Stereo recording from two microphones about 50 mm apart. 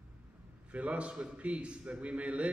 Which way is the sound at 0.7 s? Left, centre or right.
Right.